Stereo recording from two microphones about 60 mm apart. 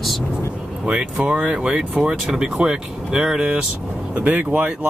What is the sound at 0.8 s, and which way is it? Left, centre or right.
Speech, centre.